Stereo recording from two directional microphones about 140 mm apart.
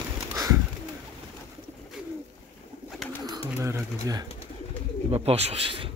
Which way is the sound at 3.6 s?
20° right (ahead or behind).